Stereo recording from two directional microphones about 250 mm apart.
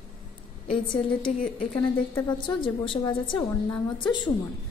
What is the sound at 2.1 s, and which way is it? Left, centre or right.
A woman's voice, centre.